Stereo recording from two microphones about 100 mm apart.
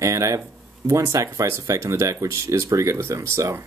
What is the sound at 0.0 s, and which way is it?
Speech, 30° right (ahead or behind).